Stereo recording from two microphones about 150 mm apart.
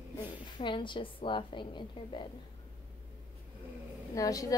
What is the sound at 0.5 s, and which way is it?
A woman's voice, 30° left (ahead or behind).